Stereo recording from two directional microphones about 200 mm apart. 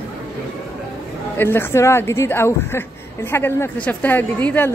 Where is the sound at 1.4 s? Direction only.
10° left (ahead or behind).